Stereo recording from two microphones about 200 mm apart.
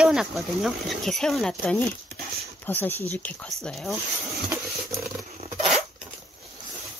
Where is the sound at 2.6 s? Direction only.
10° left (ahead or behind).